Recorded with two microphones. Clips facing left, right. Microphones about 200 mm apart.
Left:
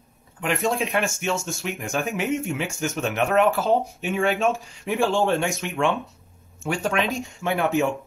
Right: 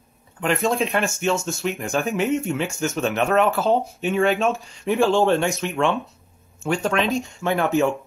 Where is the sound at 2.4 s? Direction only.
15° left (ahead or behind).